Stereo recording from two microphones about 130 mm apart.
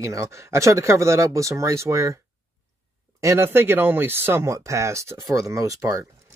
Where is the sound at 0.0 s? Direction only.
20° right (ahead or behind).